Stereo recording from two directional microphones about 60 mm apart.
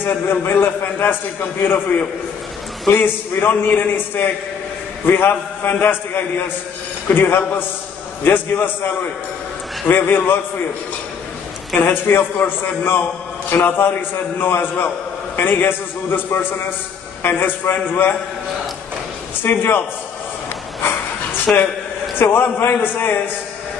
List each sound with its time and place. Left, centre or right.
0.0 s a man's voice: left
11.8 s a man's voice: left
19.4 s a man's voice: left
21.5 s a man's voice: centre
22.4 s a man's voice: left